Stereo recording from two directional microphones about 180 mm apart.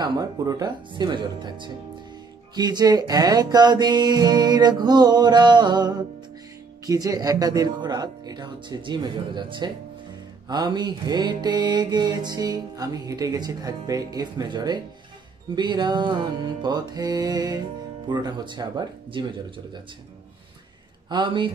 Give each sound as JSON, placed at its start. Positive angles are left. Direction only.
{"t": 0.0, "sound": "mantra", "side_deg": -20}
{"t": 21.1, "sound": "mantra", "side_deg": -25}